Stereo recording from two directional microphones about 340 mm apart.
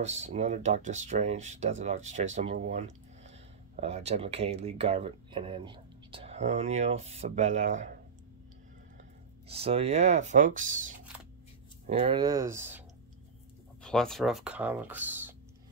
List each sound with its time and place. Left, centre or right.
0.0 s speech: centre
9.5 s speech: centre
13.8 s speech: centre